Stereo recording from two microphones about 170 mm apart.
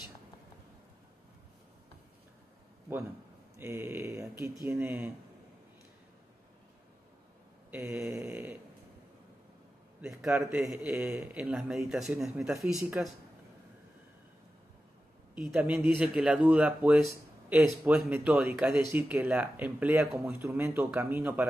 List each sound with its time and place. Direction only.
3.5 s speech: 15° right (ahead or behind)
7.7 s speech: 5° right (ahead or behind)
8.1 s speech: 15° right (ahead or behind)
10.6 s speech: 5° right (ahead or behind)
15.5 s speech: 5° right (ahead or behind)